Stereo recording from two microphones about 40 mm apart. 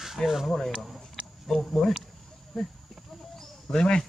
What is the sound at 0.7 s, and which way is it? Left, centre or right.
Cricket, centre.